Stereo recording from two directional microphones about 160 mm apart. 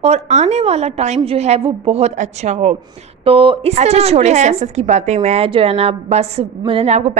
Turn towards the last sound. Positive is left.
turn(degrees=-40)  # may be behind; listen again after turning